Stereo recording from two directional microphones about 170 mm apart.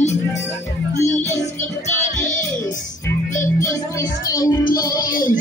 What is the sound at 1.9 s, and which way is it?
Music, 45° left (ahead or behind).